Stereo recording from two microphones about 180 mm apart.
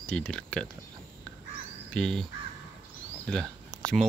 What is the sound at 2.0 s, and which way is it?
Speech, 5° left (ahead or behind).